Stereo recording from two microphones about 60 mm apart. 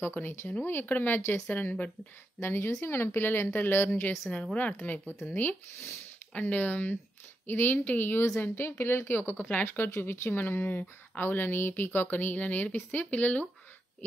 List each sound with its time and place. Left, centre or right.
0.0 s speech: left
2.4 s speech: left
9.4 s speech: left
9.9 s speech: left